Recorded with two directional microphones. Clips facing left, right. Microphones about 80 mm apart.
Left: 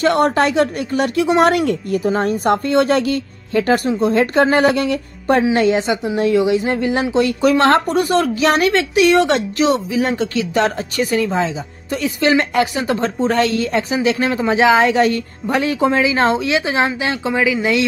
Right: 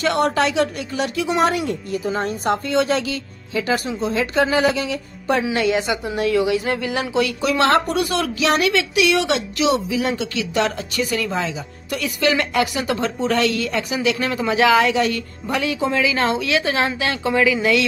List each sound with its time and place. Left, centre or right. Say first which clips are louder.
0.0 s speech: left 4 dB; left
5.4 s speech: left 5 dB; left
7.4 s a woman's voice: left 4 dB; left
11.1 s speech: left 5 dB; left
14.9 s a woman's voice: left 4 dB; left